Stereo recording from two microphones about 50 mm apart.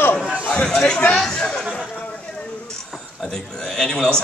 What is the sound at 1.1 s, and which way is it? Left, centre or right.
Speech, centre.